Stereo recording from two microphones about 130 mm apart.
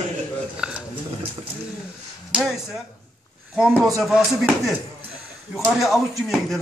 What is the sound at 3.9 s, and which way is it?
Speech, centre (ahead or behind).